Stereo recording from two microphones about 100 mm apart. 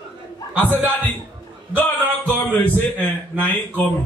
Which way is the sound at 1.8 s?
15° left (ahead or behind).